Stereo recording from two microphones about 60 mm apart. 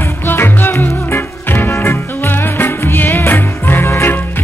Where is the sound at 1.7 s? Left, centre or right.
Left.